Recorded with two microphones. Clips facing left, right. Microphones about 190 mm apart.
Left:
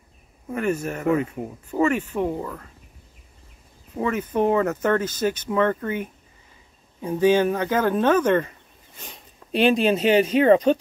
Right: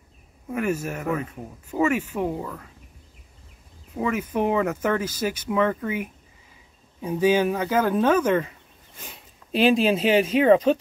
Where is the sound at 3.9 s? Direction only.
5° right (ahead or behind).